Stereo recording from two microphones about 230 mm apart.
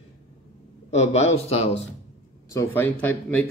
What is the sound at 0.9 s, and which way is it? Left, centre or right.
Speech, left.